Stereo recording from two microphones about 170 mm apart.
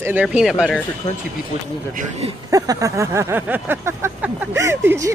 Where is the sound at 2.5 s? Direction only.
20° right (ahead or behind).